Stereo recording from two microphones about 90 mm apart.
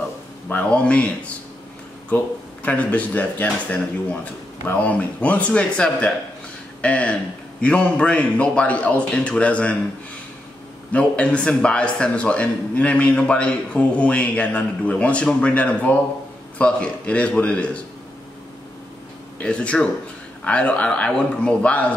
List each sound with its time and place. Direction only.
0.5 s speech: 15° left (ahead or behind)
10.9 s speech: 15° left (ahead or behind)
19.4 s speech: 10° left (ahead or behind)